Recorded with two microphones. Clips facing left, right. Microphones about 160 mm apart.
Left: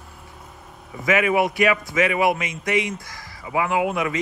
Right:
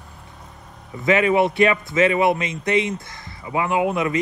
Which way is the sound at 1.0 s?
25° right (ahead or behind).